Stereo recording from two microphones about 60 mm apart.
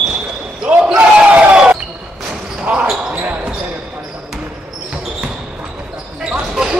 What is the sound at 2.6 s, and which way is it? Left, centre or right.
Basketball bounce, centre.